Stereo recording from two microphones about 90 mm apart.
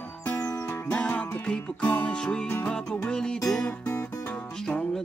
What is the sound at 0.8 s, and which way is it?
Music, 15° left (ahead or behind).